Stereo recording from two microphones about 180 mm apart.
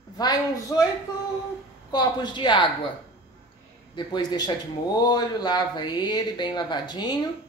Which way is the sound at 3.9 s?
25° left (ahead or behind).